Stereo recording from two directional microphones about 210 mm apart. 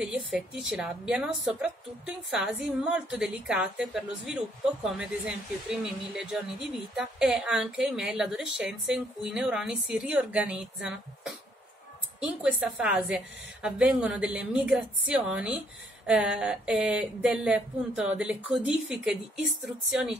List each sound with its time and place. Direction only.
0.0 s a woman's voice: 5° right (ahead or behind)